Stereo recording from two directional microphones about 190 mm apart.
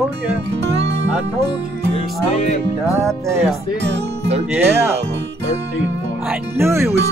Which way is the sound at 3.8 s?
65° right (ahead or behind).